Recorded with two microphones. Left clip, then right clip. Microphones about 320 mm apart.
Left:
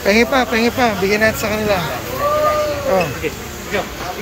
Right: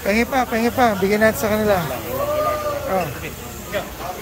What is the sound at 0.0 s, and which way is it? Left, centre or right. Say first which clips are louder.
Speech: left 5 dB; centre.